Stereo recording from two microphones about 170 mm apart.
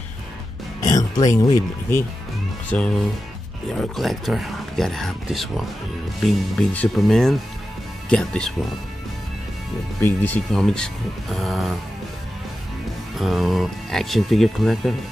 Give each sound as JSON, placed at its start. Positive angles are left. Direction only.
{"t": 0.9, "sound": "music", "side_deg": 20}
{"t": 2.7, "sound": "speech", "side_deg": 5}
{"t": 10.0, "sound": "speech", "side_deg": 10}
{"t": 13.2, "sound": "speech", "side_deg": 0}